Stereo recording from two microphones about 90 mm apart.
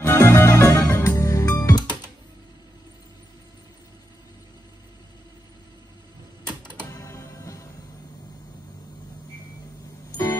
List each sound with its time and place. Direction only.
0.0 s music: 25° left (ahead or behind)
6.9 s music: 35° left (ahead or behind)